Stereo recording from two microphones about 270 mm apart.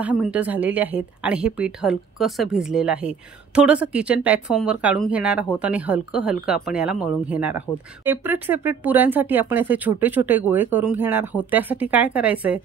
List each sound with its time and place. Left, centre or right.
0.0 s a woman's voice: centre